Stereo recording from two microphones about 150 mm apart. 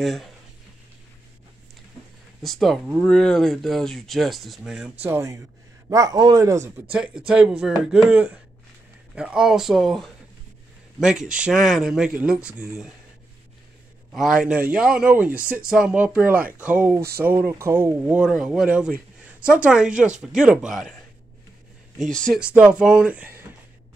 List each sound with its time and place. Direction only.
0.0 s speech: centre (ahead or behind)
2.4 s a man's voice: centre (ahead or behind); by 7.0 s 20° right (ahead or behind)
7.0 s speech: 5° right (ahead or behind)
14.1 s speech: 5° right (ahead or behind)
22.1 s speech: 5° left (ahead or behind)
22.4 s speech: 5° right (ahead or behind)